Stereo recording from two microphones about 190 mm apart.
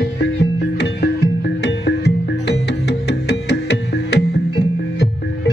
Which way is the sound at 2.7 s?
60° left (ahead or behind).